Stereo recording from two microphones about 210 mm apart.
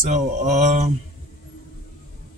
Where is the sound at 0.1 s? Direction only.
35° right (ahead or behind).